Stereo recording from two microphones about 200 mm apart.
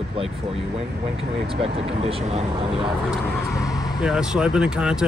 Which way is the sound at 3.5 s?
15° left (ahead or behind).